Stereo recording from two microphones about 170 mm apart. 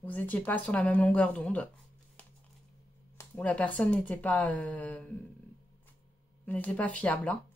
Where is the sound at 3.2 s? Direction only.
10° left (ahead or behind).